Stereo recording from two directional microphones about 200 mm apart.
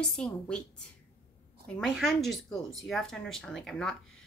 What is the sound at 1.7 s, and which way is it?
Speech, centre (ahead or behind).